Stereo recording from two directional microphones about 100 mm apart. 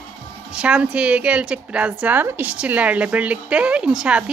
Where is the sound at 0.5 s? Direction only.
10° right (ahead or behind).